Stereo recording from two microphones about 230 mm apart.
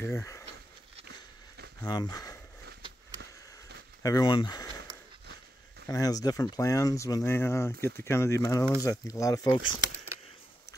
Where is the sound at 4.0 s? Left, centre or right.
Centre.